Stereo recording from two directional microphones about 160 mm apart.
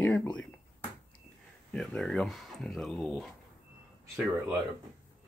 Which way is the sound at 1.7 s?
5° left (ahead or behind).